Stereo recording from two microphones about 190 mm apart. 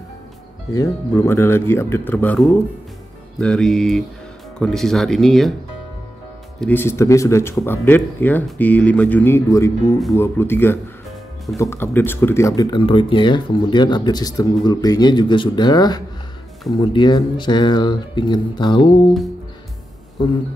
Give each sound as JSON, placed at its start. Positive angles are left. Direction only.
{"t": 0.7, "sound": "speech", "side_deg": 15}
{"t": 6.6, "sound": "speech", "side_deg": 10}